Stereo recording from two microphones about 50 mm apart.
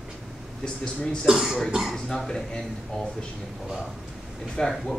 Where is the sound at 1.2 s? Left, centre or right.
Centre.